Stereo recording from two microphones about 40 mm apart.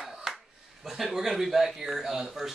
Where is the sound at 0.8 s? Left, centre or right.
Centre.